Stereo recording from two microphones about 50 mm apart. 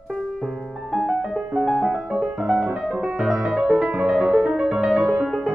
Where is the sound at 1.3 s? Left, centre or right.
Centre.